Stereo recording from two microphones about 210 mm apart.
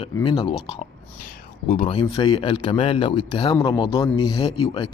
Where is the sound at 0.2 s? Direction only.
25° left (ahead or behind).